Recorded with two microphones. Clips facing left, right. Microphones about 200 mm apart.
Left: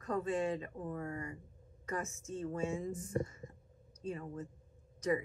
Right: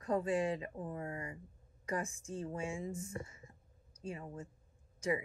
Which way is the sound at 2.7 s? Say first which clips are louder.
Left 3 dB; 10° right (ahead or behind).